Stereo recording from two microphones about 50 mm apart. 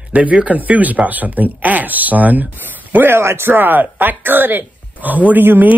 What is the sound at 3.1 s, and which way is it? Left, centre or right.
Speech, right.